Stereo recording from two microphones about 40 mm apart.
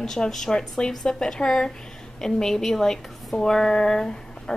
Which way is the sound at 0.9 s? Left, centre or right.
Centre.